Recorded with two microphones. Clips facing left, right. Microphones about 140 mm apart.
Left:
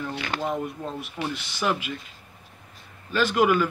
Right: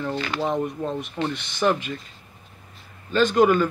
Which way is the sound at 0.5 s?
5° left (ahead or behind).